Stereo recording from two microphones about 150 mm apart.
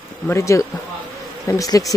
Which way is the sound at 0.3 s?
20° left (ahead or behind).